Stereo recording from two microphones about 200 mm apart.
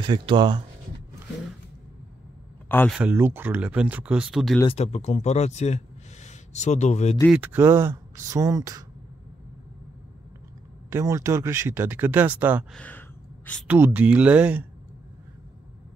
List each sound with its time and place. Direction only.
0.0 s speech: 25° right (ahead or behind)
2.9 s speech: 10° right (ahead or behind)
4.6 s speech: 35° left (ahead or behind)
7.2 s speech: 10° right (ahead or behind)
10.9 s speech: 15° right (ahead or behind)
12.7 s speech: 10° left (ahead or behind)
13.7 s speech: 10° right (ahead or behind)